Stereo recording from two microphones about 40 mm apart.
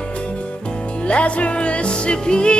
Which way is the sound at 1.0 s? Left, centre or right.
Left.